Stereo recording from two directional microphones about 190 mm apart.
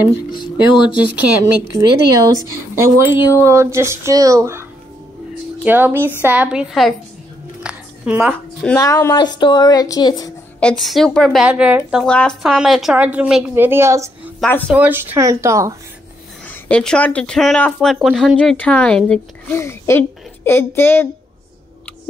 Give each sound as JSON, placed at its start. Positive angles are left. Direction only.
{"t": 1.0, "sound": "a woman's voice", "side_deg": -10}
{"t": 3.2, "sound": "a woman's voice", "side_deg": 20}
{"t": 3.4, "sound": "a woman's voice", "side_deg": -15}
{"t": 7.6, "sound": "a sound", "side_deg": -5}
{"t": 8.7, "sound": "a woman's voice", "side_deg": 20}
{"t": 10.6, "sound": "a woman's voice", "side_deg": 5}
{"t": 16.4, "sound": "a woman's voice", "side_deg": 5}